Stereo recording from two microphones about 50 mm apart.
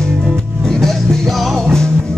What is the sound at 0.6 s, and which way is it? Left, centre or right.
Music, centre.